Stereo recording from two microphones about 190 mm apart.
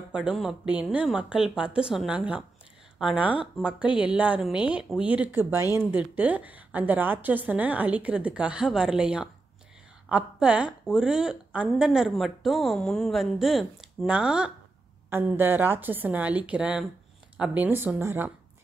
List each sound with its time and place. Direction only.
0.1 s a woman's voice: 5° right (ahead or behind)